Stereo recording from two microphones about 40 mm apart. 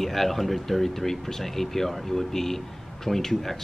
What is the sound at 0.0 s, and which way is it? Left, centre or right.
Speech, centre.